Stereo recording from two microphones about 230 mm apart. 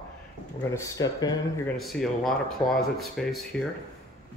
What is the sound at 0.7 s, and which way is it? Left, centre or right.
Speech, centre.